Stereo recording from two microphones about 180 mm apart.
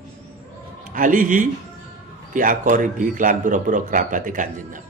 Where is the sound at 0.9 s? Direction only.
50° right (ahead or behind).